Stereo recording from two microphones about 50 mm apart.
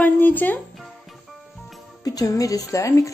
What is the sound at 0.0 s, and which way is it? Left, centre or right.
Music, left.